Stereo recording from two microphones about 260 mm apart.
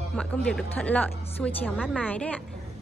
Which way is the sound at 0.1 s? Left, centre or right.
Centre.